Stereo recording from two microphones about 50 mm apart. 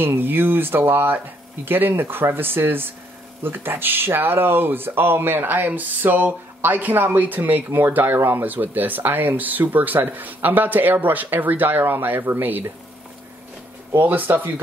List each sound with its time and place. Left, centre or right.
0.0 s speech: right
13.9 s speech: right